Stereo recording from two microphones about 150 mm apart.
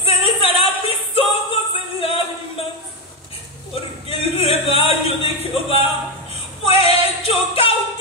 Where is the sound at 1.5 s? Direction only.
40° left (ahead or behind).